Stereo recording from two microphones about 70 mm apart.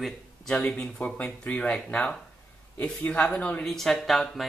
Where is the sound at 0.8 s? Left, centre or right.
Centre.